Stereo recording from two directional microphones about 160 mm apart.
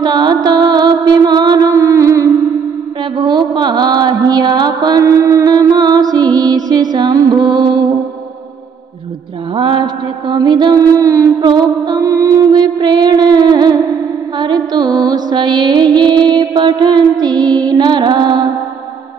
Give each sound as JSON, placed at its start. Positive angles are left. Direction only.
{"t": 0.0, "sound": "music", "side_deg": -25}
{"t": 3.0, "sound": "mantra", "side_deg": -30}
{"t": 9.6, "sound": "mantra", "side_deg": -30}
{"t": 14.4, "sound": "music", "side_deg": -25}